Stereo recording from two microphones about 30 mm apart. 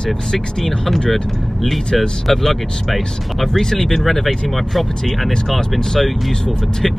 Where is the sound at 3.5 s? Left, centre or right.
Centre.